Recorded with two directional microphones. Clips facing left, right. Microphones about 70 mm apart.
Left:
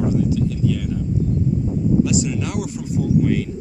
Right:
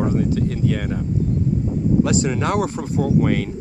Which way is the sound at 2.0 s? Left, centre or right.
Right.